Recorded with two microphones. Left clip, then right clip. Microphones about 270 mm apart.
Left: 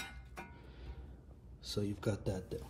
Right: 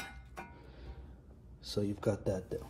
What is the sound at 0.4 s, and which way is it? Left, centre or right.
Music, centre.